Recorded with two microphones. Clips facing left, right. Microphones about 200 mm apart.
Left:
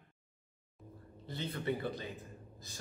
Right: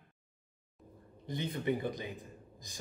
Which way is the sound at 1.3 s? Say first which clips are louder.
Right 3 dB; 15° right (ahead or behind).